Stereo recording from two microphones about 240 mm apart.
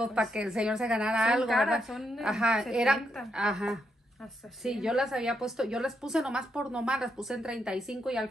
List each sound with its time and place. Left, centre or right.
0.0 s a woman's voice: centre